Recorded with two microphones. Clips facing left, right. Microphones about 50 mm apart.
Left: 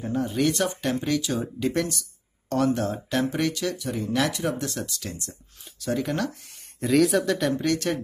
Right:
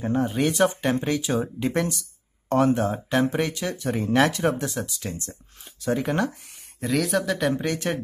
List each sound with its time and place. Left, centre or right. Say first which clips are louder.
0.0 s speech: right 1 dB; right
3.7 s speech: right 4 dB; right
4.6 s speech: right 2 dB; centre
5.0 s speech: right 3 dB; right
6.8 s speech: left 3 dB; centre
7.5 s speech: left 1 dB; centre